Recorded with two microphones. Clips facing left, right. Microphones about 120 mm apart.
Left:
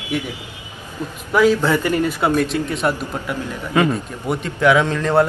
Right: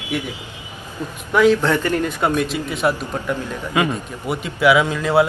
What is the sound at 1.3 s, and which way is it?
A man's voice, 5° left (ahead or behind).